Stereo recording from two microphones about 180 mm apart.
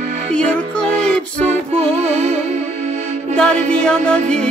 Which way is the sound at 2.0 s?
40° right (ahead or behind).